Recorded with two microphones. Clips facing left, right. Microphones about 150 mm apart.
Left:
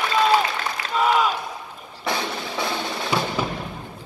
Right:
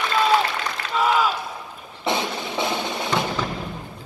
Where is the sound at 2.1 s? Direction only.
20° right (ahead or behind).